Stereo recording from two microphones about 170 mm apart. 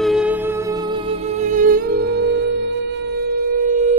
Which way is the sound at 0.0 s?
5° right (ahead or behind).